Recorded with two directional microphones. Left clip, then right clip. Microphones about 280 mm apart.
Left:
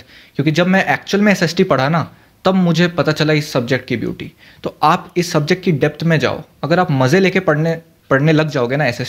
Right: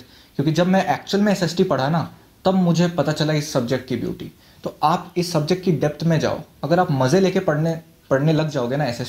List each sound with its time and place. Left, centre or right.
0.4 s speech: left